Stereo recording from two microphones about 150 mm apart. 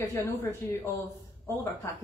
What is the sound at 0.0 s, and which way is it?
Speech, 20° left (ahead or behind).